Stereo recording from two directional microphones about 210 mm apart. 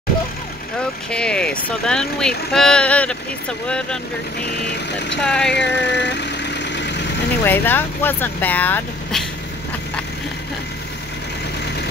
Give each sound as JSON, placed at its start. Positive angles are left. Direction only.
{"t": 1.1, "sound": "speech", "side_deg": 5}
{"t": 5.2, "sound": "speech", "side_deg": 5}
{"t": 5.5, "sound": "vehicle", "side_deg": 55}
{"t": 7.4, "sound": "speech", "side_deg": 10}